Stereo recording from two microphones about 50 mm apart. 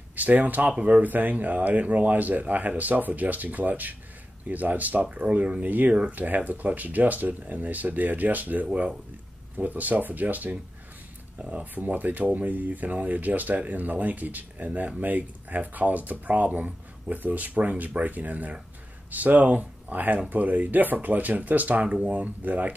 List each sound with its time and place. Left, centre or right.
0.1 s speech: right
1.0 s speech: right
11.6 s speech: right